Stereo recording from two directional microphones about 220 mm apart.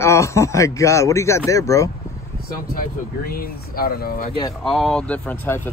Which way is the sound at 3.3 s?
45° left (ahead or behind).